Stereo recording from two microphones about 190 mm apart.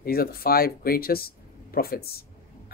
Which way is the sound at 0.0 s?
50° left (ahead or behind).